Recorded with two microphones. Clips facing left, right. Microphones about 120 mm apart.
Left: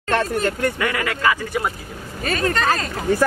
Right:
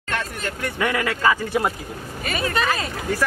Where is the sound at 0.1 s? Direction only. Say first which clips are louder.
Left 8 dB; 40° left (ahead or behind).